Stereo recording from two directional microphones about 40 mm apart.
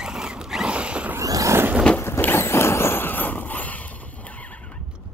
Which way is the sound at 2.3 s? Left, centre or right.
Left.